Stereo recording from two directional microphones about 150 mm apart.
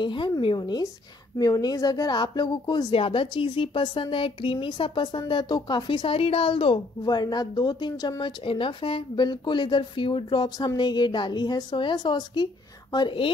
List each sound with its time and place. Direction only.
0.0 s a woman's voice: 30° left (ahead or behind)